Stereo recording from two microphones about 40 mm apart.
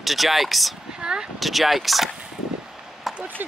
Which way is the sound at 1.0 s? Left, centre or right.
Centre.